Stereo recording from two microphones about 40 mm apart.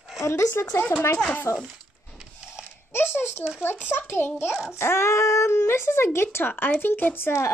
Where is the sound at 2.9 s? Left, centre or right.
Left.